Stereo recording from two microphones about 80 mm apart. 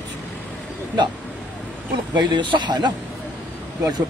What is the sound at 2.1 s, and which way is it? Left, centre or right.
Speech, right.